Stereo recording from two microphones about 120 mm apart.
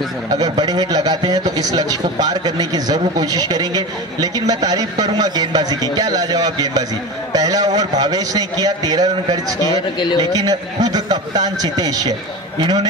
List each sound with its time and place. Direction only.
0.3 s a man's voice: 30° right (ahead or behind)
9.6 s a man's voice: 40° left (ahead or behind)
10.3 s a man's voice: 30° right (ahead or behind)